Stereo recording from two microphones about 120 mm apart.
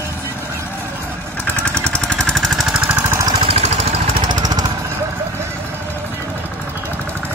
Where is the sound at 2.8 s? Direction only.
20° right (ahead or behind).